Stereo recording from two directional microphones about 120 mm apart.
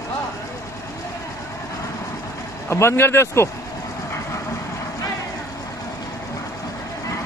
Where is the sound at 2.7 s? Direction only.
20° left (ahead or behind).